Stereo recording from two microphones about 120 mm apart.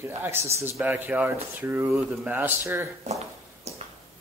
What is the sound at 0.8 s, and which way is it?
Speech, 15° right (ahead or behind).